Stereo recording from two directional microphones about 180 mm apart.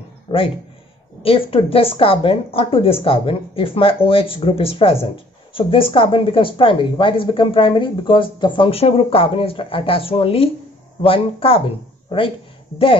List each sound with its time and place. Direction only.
1.2 s speech: 30° left (ahead or behind)